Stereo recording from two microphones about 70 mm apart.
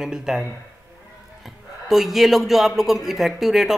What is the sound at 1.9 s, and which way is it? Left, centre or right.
A man's voice, centre.